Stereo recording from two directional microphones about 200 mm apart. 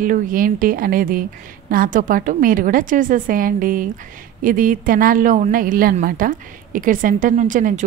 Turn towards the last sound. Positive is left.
turn(degrees=-40)  # may be behind; listen again after turning